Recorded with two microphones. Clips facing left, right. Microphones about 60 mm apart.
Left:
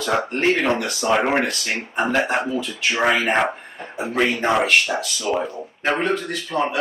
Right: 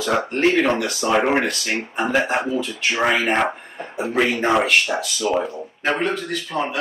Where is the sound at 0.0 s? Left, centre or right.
Centre.